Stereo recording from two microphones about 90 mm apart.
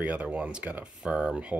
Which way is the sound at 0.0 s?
15° right (ahead or behind).